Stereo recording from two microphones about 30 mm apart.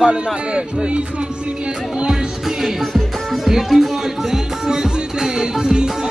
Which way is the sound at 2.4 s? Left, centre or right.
Centre.